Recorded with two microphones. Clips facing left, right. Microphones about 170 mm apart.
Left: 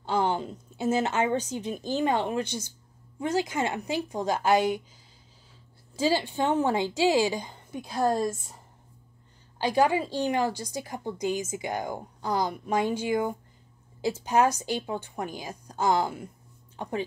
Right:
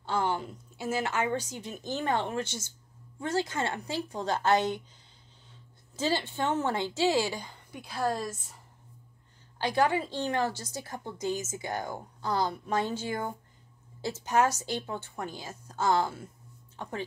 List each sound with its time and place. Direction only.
0.0 s a woman's voice: 15° left (ahead or behind)
5.9 s a woman's voice: 10° left (ahead or behind)
9.6 s a woman's voice: 15° left (ahead or behind)